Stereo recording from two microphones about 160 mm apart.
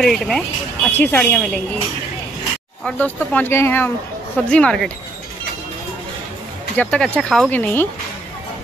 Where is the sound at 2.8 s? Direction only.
10° left (ahead or behind).